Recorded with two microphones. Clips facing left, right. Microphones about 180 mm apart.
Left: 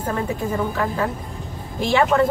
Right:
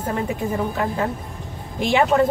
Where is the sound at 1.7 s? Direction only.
15° right (ahead or behind).